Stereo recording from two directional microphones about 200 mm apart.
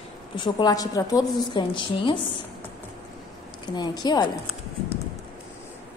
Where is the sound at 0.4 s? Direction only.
20° left (ahead or behind).